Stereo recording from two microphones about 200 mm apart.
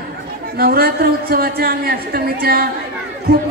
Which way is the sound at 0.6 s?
50° right (ahead or behind).